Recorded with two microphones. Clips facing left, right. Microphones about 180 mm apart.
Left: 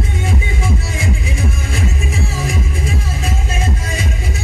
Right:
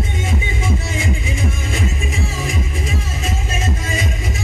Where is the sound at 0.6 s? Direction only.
20° right (ahead or behind).